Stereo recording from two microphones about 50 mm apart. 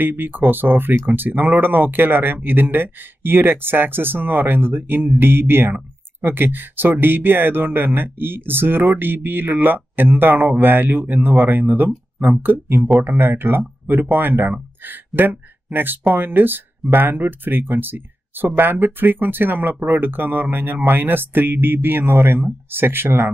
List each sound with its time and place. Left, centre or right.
0.0 s speech: right